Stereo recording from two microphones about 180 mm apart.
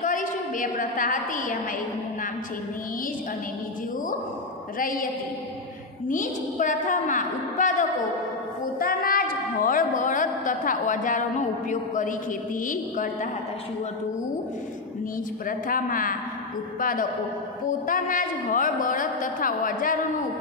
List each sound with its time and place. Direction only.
0.0 s a woman's voice: 45° left (ahead or behind)
4.7 s a woman's voice: 50° left (ahead or behind)
6.0 s a woman's voice: 45° left (ahead or behind)
15.4 s a woman's voice: 50° left (ahead or behind)
17.6 s a woman's voice: 50° left (ahead or behind)